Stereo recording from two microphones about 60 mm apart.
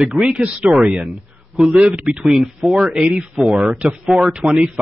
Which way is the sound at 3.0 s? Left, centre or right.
Centre.